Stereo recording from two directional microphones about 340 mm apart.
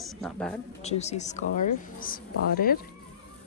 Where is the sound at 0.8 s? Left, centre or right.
Centre.